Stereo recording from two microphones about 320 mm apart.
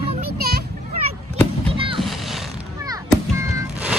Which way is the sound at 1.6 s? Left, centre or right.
Centre.